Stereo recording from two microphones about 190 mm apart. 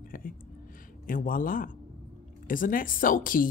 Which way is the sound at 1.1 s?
45° left (ahead or behind).